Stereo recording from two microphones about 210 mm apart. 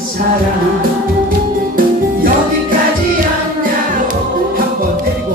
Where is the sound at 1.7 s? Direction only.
45° right (ahead or behind).